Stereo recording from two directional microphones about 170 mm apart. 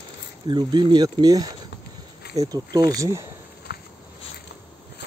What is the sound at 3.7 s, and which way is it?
Walk, 65° left (ahead or behind).